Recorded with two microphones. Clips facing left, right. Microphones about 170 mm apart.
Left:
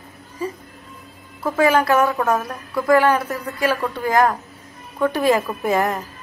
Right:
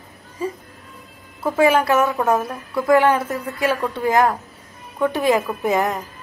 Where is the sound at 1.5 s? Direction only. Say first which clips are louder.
Right 1 dB; 25° right (ahead or behind).